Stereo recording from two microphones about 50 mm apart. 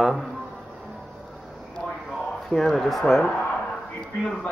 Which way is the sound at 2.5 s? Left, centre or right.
Centre.